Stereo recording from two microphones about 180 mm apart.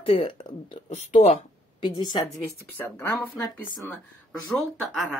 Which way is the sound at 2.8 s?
15° left (ahead or behind).